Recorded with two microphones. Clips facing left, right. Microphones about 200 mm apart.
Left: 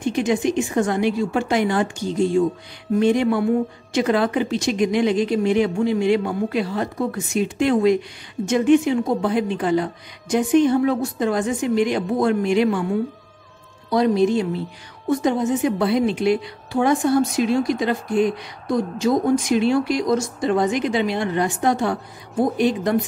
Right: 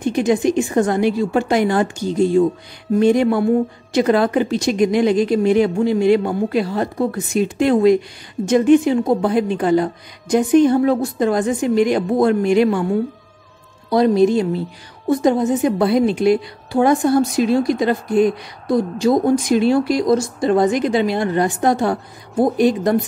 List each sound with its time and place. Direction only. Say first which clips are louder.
0.0 s a woman's voice: right 4 dB; 40° right (ahead or behind)
13.8 s a woman's voice: right 4 dB; 35° right (ahead or behind)